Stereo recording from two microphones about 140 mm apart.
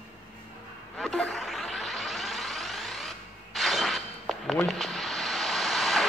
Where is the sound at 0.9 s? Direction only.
5° left (ahead or behind).